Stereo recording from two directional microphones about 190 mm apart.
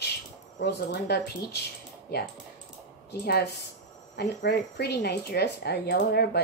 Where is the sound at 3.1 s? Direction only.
60° left (ahead or behind).